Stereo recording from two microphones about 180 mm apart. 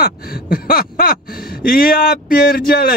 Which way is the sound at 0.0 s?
55° left (ahead or behind).